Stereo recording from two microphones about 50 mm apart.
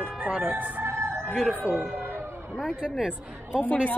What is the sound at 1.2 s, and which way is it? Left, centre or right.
Speech, centre.